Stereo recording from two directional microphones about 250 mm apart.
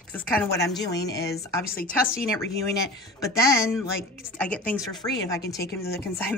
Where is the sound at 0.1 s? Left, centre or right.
Centre.